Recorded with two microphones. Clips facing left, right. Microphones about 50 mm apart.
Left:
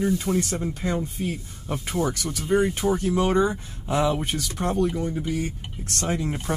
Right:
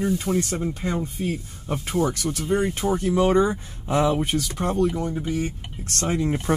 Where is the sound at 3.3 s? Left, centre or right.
Right.